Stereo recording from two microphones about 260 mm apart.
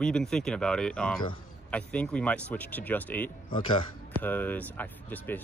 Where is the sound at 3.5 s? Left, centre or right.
Centre.